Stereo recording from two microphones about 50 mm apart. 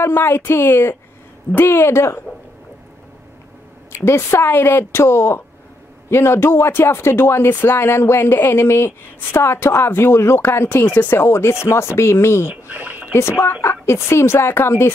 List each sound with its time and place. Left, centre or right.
0.0 s speech: left
3.9 s a woman's voice: left
4.5 s speech: left
12.6 s a sound: right
13.1 s speech: left